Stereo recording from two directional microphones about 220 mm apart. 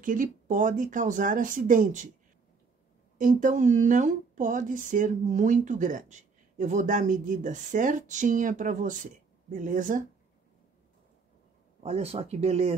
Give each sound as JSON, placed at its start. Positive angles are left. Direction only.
{"t": 0.0, "sound": "speech", "side_deg": -35}
{"t": 3.2, "sound": "speech", "side_deg": -35}
{"t": 11.8, "sound": "speech", "side_deg": -30}